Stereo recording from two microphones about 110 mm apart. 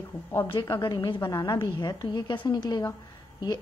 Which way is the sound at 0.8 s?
45° left (ahead or behind).